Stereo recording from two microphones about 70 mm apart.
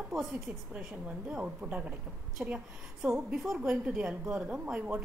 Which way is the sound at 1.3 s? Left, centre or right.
Centre.